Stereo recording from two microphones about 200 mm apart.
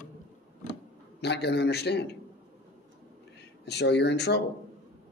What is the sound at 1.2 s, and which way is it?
Speech, 55° left (ahead or behind).